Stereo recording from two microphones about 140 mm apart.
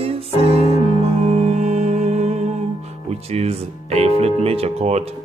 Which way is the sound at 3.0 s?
50° right (ahead or behind).